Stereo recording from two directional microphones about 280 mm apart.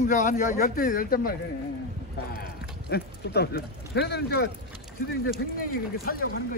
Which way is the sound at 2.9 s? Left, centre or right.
Left.